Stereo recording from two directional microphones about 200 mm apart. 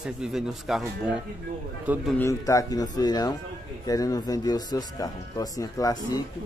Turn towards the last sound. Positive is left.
turn(degrees=15)  # may be behind; listen again after turning